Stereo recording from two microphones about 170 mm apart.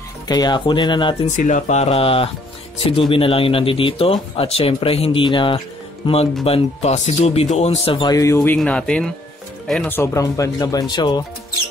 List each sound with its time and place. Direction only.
0.3 s speech: 25° left (ahead or behind)
1.3 s speech: 45° left (ahead or behind); by 8.5 s 20° left (ahead or behind)
8.5 s speech: 5° left (ahead or behind); by 11.2 s 25° left (ahead or behind)